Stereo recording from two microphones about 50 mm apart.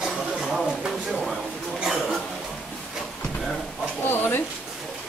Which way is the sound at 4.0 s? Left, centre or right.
Left.